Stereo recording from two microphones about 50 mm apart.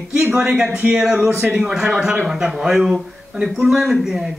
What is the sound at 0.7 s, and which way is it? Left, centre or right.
Speech, right.